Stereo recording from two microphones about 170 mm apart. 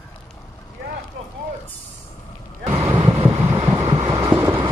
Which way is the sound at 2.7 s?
15° right (ahead or behind).